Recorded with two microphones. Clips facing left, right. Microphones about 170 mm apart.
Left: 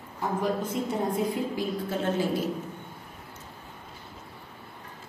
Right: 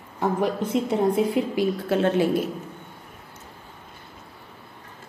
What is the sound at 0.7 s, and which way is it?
A woman's voice, 75° right (ahead or behind).